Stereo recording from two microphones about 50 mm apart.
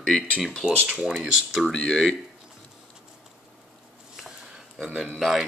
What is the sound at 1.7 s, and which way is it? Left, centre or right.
Speech, centre.